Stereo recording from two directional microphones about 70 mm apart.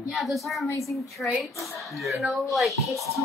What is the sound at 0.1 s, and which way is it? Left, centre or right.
Speech, centre.